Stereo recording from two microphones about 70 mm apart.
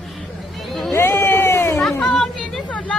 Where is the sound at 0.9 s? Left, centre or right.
Left.